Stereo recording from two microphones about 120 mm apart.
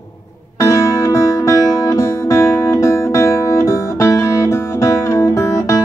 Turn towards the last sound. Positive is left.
turn(degrees=25)  # may be behind; listen again after turning